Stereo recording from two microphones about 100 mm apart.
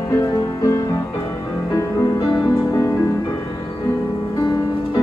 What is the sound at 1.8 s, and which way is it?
Music, 40° left (ahead or behind).